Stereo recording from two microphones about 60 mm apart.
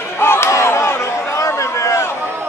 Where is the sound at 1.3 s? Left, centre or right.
Left.